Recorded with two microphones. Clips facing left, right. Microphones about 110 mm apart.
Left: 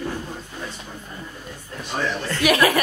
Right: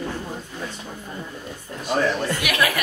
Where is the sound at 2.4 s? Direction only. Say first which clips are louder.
Left 8 dB; 40° left (ahead or behind).